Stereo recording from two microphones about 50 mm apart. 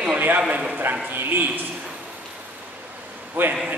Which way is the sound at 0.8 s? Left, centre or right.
Right.